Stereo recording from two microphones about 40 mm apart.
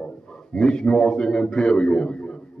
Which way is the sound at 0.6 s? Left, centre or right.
Left.